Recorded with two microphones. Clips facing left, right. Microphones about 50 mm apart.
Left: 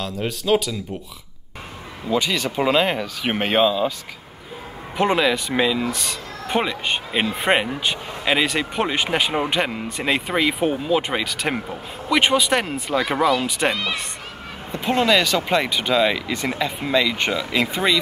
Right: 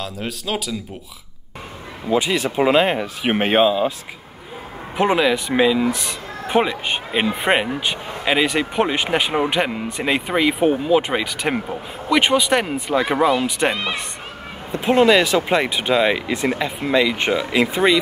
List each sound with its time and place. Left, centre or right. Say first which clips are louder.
0.0 s speech: left 2 dB; centre
2.0 s speech: right 3 dB; right
4.9 s speech: right 2 dB; centre
14.7 s speech: right 4 dB; right